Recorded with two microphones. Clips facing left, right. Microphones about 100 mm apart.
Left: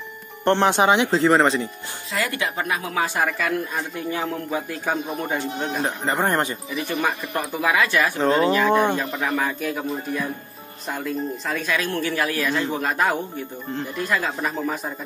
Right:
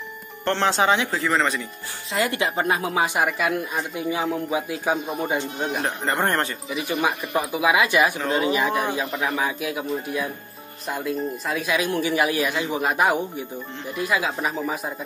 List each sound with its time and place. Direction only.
0.5 s speech: 20° left (ahead or behind)
2.1 s speech: 25° right (ahead or behind)
5.8 s a man's voice: centre (ahead or behind)
6.7 s a man's voice: 10° right (ahead or behind)